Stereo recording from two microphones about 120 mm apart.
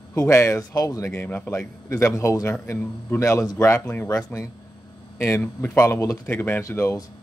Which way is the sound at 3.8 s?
15° left (ahead or behind).